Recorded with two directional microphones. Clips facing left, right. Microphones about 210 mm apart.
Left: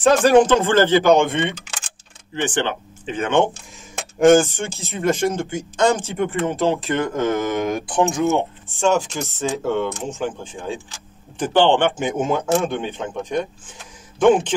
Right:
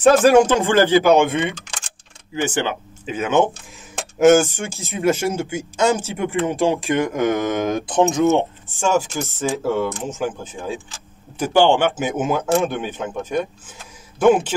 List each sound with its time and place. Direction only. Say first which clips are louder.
0.0 s speech: right 1 dB; 5° right (ahead or behind)
2.4 s speech: even; 10° right (ahead or behind)
8.8 s speech: left 1 dB; 5° right (ahead or behind)